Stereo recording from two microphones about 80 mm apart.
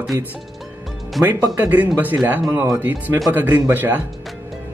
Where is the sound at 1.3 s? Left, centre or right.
Right.